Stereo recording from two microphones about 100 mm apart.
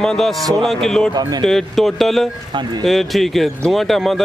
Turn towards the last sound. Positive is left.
turn(degrees=0)  # may be behind; listen again after turning